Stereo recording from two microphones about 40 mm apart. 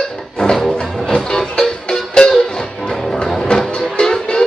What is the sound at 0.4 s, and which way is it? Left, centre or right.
Music, centre.